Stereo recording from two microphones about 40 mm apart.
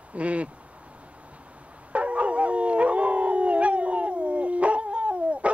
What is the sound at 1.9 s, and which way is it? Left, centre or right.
Howl, right.